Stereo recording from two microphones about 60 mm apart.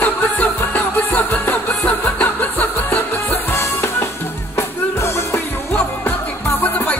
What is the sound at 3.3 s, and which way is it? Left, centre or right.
Music, left.